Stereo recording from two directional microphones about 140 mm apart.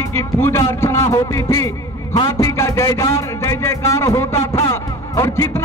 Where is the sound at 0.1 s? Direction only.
15° left (ahead or behind).